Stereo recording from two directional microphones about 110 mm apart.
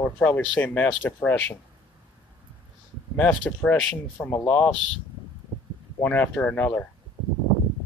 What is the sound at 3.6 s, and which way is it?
Speech, 15° left (ahead or behind).